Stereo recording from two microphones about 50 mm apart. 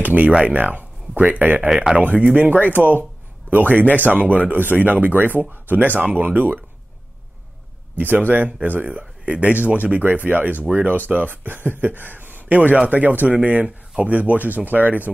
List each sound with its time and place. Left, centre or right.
0.0 s a sound: right
0.5 s speech: right
2.7 s speech: right
8.3 s a man's voice: right